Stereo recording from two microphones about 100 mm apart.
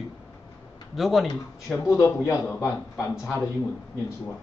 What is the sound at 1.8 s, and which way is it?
A man's voice, 30° left (ahead or behind).